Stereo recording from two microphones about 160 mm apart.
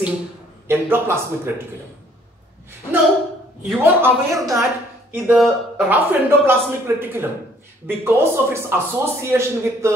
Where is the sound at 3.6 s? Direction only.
10° right (ahead or behind).